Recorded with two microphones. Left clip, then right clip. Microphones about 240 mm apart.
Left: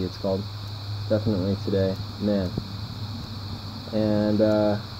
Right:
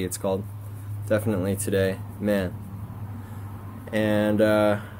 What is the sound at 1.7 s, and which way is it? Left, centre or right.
Speech, right.